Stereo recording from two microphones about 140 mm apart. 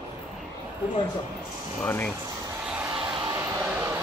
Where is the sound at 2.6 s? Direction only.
5° right (ahead or behind).